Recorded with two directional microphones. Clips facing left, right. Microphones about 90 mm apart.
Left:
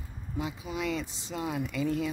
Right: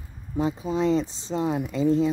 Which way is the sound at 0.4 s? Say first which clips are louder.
Right 9 dB; 35° right (ahead or behind).